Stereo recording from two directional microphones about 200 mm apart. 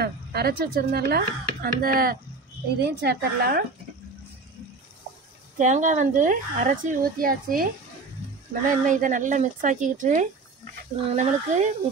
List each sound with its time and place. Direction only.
0.0 s a woman's voice: 50° right (ahead or behind)
5.6 s speech: 40° right (ahead or behind)